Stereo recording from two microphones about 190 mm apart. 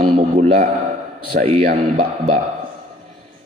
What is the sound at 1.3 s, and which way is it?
Speech, 45° right (ahead or behind).